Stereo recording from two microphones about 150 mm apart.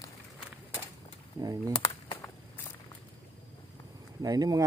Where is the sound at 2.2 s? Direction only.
15° left (ahead or behind).